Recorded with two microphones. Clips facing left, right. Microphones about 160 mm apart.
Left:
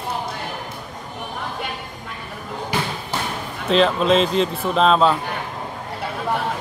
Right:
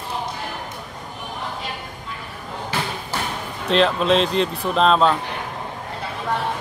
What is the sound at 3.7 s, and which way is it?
Speech, centre (ahead or behind).